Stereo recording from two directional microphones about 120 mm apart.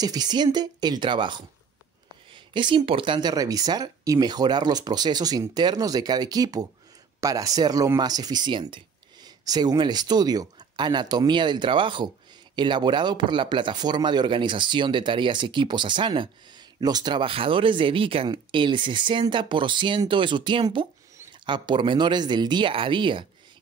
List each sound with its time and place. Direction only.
0.0 s speech: 35° right (ahead or behind)